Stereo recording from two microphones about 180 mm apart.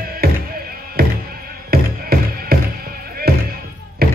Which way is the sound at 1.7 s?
60° right (ahead or behind).